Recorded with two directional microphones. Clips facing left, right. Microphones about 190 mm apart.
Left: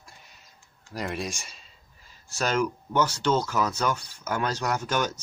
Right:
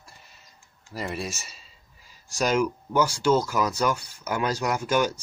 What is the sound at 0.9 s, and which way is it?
Speech, 5° right (ahead or behind).